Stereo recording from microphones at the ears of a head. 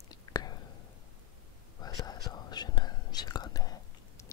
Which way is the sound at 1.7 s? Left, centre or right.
Left.